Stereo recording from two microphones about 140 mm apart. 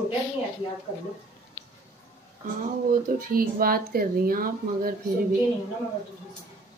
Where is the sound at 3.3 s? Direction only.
90° right.